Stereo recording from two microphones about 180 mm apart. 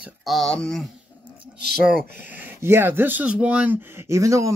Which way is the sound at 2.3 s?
10° right (ahead or behind).